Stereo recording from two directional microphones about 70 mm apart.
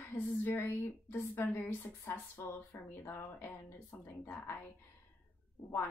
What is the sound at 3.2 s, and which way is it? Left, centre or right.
Speech, left.